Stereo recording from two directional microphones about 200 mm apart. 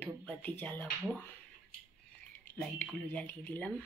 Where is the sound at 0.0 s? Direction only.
10° left (ahead or behind).